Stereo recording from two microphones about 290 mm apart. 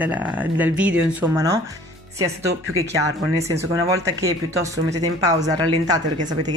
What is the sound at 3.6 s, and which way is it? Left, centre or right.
Speech, centre.